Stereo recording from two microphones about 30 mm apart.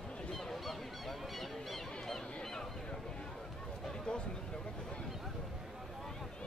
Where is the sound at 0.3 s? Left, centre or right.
Centre.